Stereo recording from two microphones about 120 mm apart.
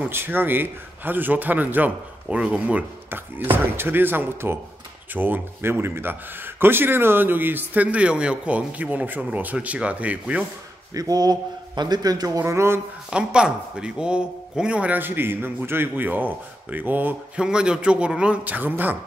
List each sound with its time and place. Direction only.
0.0 s a man's voice: 15° right (ahead or behind)
10.9 s a man's voice: 30° right (ahead or behind)
13.1 s a man's voice: 5° right (ahead or behind)